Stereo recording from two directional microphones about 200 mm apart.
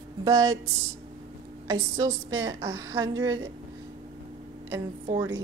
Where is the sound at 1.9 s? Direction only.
20° right (ahead or behind).